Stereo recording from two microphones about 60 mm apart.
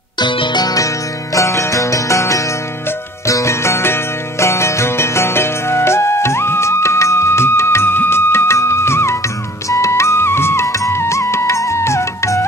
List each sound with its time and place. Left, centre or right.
0.7 s music: left